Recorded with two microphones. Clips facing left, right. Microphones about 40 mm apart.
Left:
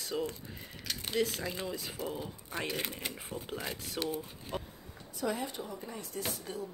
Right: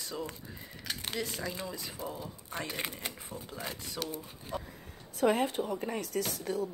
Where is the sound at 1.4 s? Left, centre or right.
Centre.